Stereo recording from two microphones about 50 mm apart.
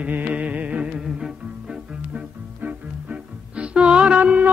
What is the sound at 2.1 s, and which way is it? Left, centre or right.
Music, right.